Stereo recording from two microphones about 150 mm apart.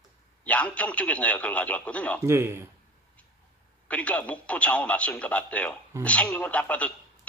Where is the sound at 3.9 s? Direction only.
10° left (ahead or behind).